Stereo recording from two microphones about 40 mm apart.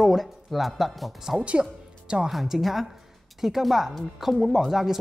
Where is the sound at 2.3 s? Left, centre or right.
Centre.